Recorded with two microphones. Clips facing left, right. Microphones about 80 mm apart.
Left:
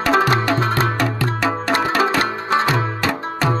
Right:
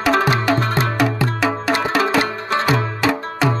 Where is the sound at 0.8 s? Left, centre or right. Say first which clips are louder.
Right 1 dB; centre.